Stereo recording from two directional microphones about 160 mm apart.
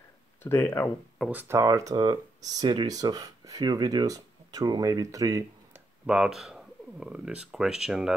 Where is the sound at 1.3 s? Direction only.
15° right (ahead or behind).